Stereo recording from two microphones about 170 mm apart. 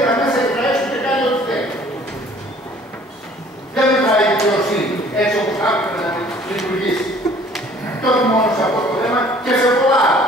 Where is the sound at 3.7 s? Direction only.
5° left (ahead or behind).